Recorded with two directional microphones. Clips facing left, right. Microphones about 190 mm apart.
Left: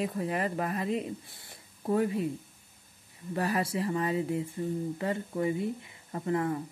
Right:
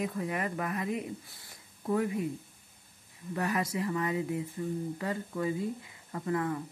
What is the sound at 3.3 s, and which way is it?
Speech, 30° left (ahead or behind).